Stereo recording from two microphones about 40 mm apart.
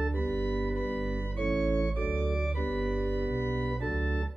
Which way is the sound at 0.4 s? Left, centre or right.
Left.